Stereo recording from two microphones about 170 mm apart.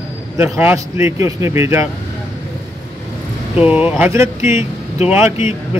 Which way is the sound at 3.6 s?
5° right (ahead or behind).